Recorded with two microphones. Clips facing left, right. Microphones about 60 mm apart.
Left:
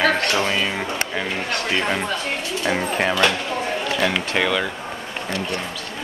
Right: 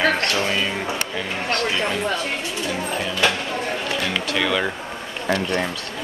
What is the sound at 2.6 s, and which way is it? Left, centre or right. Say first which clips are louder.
Speech: left 6 dB; left.